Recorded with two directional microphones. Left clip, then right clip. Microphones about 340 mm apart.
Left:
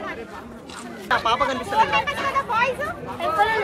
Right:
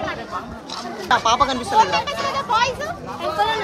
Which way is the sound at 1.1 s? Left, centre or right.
Centre.